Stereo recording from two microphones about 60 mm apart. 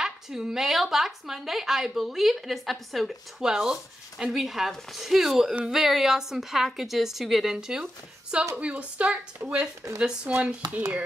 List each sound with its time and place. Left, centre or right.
0.0 s a woman's voice: centre
7.8 s a woman's voice: right